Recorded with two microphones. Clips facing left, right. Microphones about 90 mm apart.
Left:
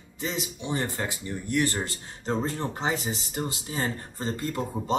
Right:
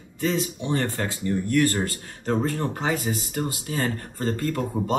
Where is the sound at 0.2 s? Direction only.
20° left (ahead or behind).